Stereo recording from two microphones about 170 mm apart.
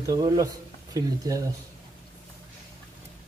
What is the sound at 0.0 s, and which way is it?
Speech, 20° right (ahead or behind).